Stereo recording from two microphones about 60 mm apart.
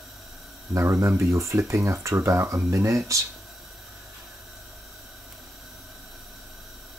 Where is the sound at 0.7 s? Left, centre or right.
Right.